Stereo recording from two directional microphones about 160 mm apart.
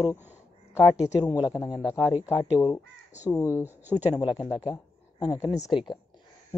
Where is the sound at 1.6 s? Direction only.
5° right (ahead or behind).